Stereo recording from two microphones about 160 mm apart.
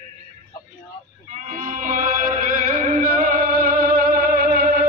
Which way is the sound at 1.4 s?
55° right (ahead or behind).